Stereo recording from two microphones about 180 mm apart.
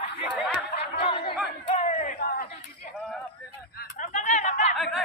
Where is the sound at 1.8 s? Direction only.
40° left (ahead or behind).